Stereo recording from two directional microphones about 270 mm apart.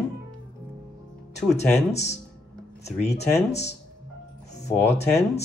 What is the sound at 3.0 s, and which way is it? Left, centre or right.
Speech, left.